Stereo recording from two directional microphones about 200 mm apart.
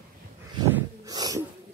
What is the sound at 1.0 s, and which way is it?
Sneeze, 20° right (ahead or behind).